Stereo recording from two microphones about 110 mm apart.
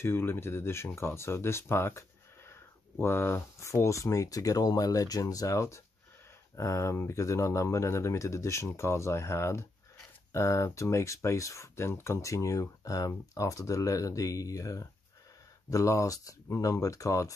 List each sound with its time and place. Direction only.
0.0 s speech: 20° left (ahead or behind)